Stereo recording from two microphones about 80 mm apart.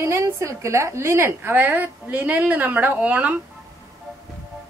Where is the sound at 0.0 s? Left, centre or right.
Right; by 3.3 s centre.